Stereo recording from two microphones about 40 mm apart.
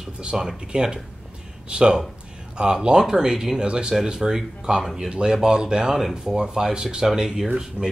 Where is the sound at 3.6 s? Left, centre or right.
Right.